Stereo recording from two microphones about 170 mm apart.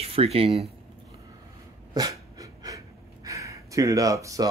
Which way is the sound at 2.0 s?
20° right (ahead or behind).